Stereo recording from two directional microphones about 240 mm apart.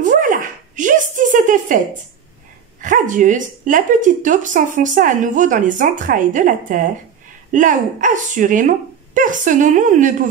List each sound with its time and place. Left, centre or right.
0.0 s dog: right
2.8 s speech: right